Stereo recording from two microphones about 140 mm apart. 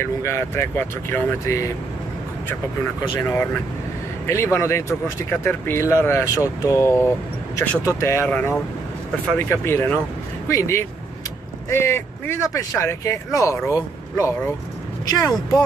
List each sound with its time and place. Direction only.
0.0 s speech: 20° left (ahead or behind)
3.0 s speech: 20° left (ahead or behind)